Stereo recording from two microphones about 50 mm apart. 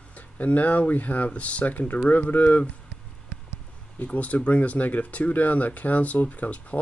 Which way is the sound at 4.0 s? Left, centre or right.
Left.